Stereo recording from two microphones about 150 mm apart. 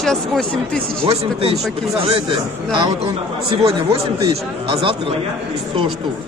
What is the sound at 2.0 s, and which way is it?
Speech, 35° right (ahead or behind).